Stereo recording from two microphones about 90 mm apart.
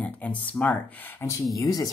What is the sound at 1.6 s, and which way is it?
Speech, 40° left (ahead or behind).